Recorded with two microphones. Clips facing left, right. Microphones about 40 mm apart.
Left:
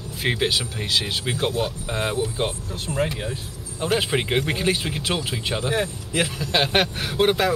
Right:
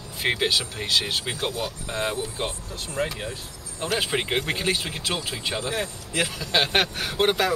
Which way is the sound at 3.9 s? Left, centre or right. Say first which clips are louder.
Left 3 dB; centre.